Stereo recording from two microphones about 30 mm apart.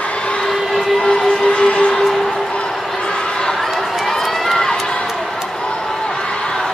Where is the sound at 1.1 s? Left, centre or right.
Centre.